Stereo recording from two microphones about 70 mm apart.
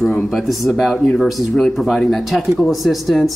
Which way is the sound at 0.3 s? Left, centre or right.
Centre.